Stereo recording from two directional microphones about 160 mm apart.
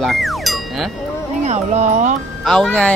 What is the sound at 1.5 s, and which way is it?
Speech, 45° right (ahead or behind).